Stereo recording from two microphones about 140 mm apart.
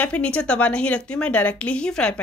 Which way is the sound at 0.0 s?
10° left (ahead or behind).